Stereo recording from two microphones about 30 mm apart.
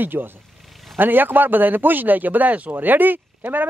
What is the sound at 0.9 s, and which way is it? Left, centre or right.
A man's voice, right.